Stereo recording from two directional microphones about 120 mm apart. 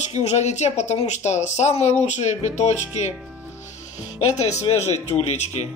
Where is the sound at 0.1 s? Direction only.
70° left (ahead or behind).